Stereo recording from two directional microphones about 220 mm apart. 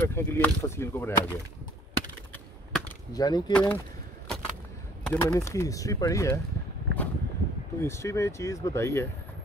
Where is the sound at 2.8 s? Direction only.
20° left (ahead or behind).